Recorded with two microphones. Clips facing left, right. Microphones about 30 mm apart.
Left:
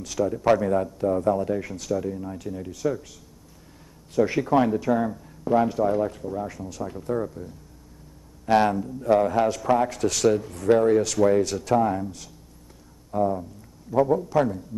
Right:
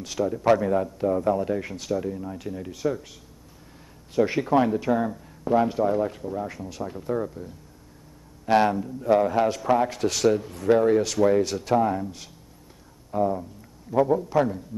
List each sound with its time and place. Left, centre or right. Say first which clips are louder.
0.0 s a man's voice: left 1 dB; right
0.3 s speech: even; centre; by 2.0 s right
2.0 s speech: even; centre
4.1 s speech: even; centre
4.5 s speech: even; centre
13.1 s a man's voice: even; centre